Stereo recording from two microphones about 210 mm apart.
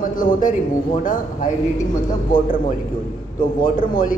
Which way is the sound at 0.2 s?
40° left (ahead or behind).